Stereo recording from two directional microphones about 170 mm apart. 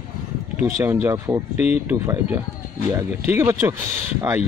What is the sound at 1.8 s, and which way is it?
Speech, 15° right (ahead or behind).